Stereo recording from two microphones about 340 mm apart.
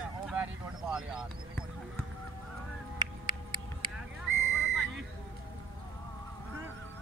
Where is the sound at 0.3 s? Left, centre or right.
Centre.